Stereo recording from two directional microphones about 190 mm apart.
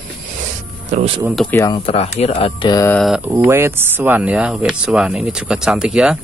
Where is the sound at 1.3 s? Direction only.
Centre (ahead or behind).